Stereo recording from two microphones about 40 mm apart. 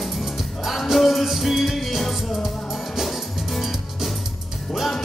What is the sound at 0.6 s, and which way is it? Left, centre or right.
Music, centre.